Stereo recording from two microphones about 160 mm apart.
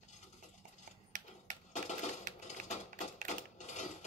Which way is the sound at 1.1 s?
55° right (ahead or behind).